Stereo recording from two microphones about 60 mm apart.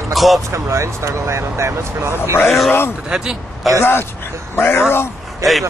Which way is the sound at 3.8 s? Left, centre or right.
Left.